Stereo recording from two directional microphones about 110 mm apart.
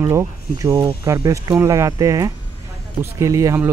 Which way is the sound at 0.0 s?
30° right (ahead or behind).